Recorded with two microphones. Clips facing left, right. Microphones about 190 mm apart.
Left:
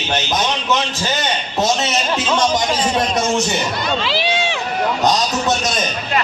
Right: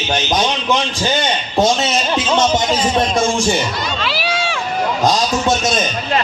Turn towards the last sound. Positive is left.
turn(degrees=25)  # may be behind; listen again after turning